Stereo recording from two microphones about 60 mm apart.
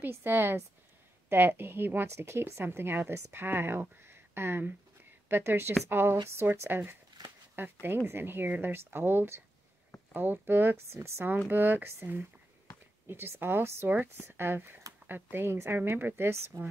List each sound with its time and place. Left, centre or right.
0.0 s speech: right
4.1 s a sound: right
5.3 s speech: right
7.8 s speech: right
11.2 s speech: right